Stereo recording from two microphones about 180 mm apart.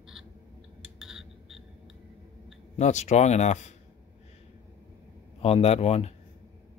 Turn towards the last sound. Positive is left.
turn(degrees=35)  # may be behind; listen again after turning